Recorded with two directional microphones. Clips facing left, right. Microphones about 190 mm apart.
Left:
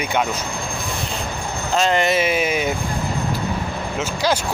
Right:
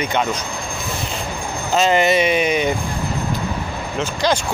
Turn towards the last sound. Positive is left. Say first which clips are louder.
# right 1 dB
turn(degrees=5)  # may be behind; listen again after turning